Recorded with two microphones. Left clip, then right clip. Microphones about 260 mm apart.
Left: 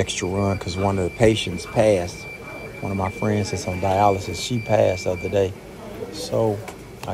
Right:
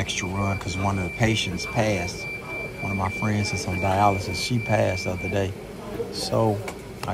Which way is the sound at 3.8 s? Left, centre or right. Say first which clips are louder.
Left 3 dB; centre.